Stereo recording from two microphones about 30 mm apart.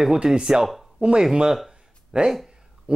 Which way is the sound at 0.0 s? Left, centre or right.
Right.